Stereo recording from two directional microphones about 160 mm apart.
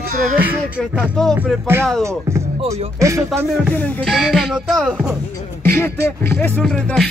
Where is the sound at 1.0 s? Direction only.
Centre (ahead or behind).